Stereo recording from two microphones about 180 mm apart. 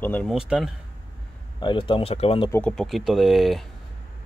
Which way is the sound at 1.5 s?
25° left (ahead or behind).